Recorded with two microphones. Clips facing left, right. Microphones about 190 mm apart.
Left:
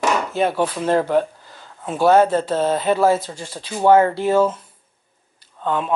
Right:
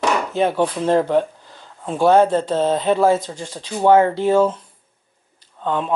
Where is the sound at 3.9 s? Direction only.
10° right (ahead or behind).